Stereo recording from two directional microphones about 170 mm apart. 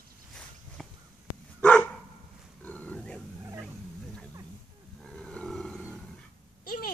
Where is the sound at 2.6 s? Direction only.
10° left (ahead or behind).